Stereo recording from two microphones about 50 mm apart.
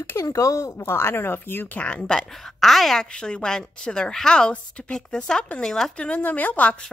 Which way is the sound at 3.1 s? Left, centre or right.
Centre.